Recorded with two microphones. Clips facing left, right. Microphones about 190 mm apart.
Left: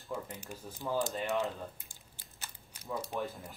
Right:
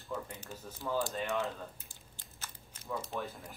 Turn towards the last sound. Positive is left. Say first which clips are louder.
# left 3 dB
turn(degrees=0)  # may be behind; listen again after turning